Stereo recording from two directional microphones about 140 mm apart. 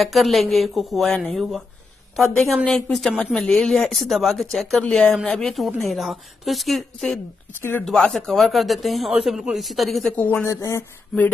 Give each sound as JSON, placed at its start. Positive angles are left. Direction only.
{"t": 0.0, "sound": "speech", "side_deg": 0}
{"t": 10.2, "sound": "speech", "side_deg": 15}